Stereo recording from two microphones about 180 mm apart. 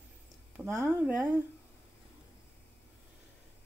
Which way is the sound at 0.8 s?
10° right (ahead or behind).